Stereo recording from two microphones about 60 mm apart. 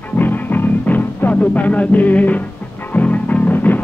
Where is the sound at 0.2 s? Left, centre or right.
Left.